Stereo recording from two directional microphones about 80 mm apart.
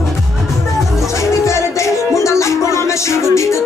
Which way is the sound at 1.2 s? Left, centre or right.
Left.